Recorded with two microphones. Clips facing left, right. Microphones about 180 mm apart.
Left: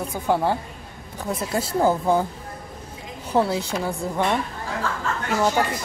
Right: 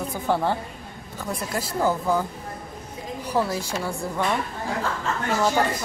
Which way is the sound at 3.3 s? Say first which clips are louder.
Left 4 dB; 25° left (ahead or behind).